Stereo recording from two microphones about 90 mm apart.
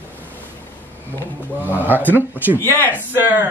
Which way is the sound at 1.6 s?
20° right (ahead or behind).